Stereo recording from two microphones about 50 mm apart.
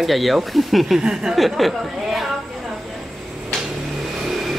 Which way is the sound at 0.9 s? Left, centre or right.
Centre.